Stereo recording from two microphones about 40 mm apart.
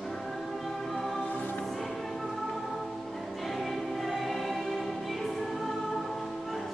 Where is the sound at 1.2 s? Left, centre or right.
Left.